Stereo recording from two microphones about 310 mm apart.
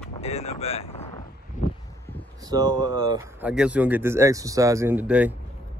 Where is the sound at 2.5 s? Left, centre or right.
Centre.